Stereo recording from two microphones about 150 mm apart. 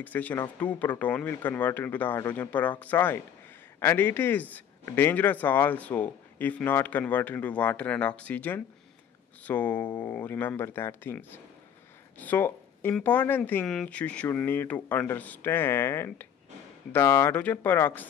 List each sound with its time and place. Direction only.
0.0 s speech: 10° left (ahead or behind)